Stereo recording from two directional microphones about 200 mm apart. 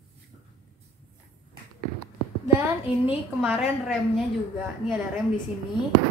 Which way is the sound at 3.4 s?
5° right (ahead or behind).